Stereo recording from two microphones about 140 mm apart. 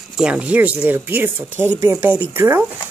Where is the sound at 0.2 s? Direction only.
10° right (ahead or behind).